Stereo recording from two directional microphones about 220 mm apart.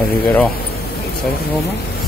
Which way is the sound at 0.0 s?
45° left (ahead or behind).